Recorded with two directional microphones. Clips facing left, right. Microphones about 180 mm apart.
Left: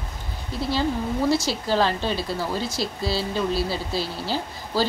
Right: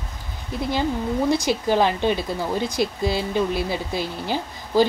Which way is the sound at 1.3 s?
20° right (ahead or behind).